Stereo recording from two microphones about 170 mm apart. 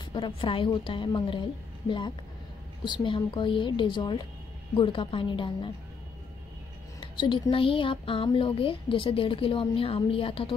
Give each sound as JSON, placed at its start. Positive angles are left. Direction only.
{"t": 0.0, "sound": "a woman's voice", "side_deg": 30}
{"t": 7.0, "sound": "speech", "side_deg": 30}